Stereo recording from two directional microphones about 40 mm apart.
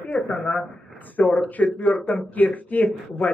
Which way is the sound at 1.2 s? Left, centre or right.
Left.